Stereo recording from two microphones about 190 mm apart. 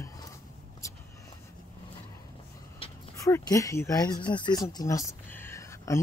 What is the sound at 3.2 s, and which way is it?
Speech, 15° left (ahead or behind).